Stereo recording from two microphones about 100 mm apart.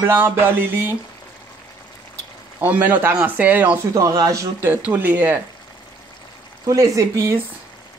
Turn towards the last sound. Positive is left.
turn(degrees=-30)  # may be behind; listen again after turning